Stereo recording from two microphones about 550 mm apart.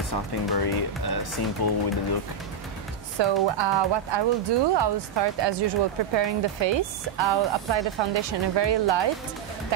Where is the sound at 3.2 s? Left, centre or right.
Right.